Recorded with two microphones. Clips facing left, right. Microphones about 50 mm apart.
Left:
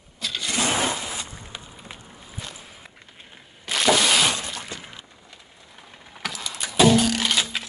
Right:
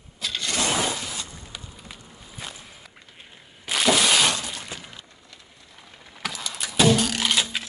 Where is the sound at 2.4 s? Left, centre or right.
Centre.